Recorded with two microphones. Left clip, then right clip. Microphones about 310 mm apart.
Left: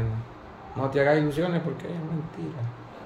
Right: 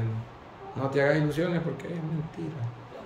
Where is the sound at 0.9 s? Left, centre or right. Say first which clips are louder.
Left 3 dB; centre.